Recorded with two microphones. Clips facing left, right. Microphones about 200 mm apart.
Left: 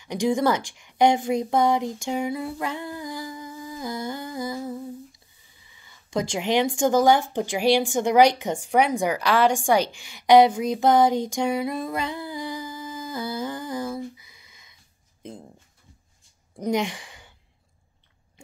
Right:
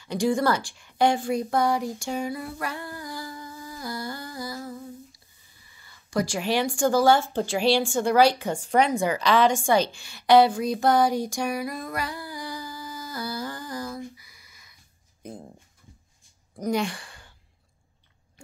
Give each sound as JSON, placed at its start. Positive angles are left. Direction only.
{"t": 0.0, "sound": "a woman's voice", "side_deg": 15}
{"t": 16.6, "sound": "speech", "side_deg": 15}